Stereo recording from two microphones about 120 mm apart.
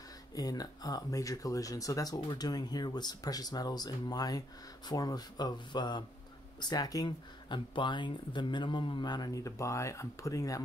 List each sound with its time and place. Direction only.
0.3 s speech: 30° left (ahead or behind)